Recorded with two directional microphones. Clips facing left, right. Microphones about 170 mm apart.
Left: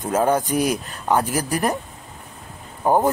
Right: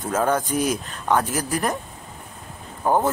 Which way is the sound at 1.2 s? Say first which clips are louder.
Left 2 dB; 40° left (ahead or behind).